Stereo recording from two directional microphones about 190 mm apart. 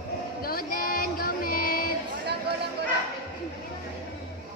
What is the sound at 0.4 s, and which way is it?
Female singing, 50° left (ahead or behind).